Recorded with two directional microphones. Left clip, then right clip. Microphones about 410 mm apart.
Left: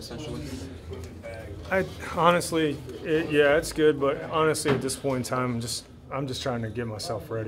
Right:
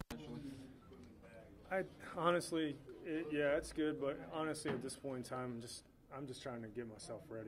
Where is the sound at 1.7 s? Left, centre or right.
Right.